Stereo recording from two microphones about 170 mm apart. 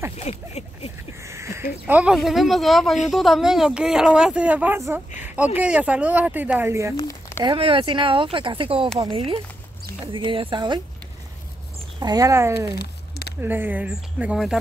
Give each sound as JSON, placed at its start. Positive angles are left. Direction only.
{"t": 0.2, "sound": "speech", "side_deg": 40}
{"t": 1.2, "sound": "a sound", "side_deg": -15}
{"t": 1.9, "sound": "speech", "side_deg": -5}
{"t": 7.1, "sound": "a sound", "side_deg": 15}
{"t": 7.4, "sound": "speech", "side_deg": -30}
{"t": 12.0, "sound": "speech", "side_deg": -20}